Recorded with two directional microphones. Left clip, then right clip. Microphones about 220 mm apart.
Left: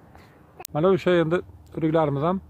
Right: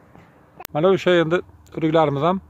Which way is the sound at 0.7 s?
10° right (ahead or behind).